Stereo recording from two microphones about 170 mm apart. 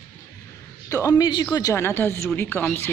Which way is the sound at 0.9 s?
20° left (ahead or behind).